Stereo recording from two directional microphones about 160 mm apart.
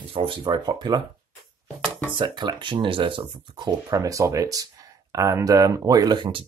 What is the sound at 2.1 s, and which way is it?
Speech, 30° right (ahead or behind).